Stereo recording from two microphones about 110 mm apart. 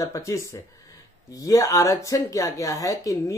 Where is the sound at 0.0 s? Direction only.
30° left (ahead or behind).